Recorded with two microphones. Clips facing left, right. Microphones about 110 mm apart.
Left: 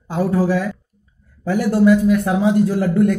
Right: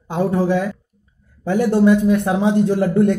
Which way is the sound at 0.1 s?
20° right (ahead or behind).